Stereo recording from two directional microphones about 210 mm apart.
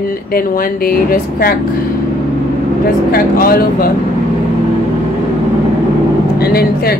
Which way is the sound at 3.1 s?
45° left (ahead or behind).